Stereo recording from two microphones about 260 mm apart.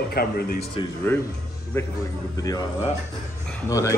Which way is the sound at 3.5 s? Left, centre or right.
Centre.